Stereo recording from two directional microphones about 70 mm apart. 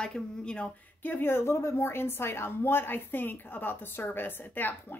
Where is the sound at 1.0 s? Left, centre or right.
Left.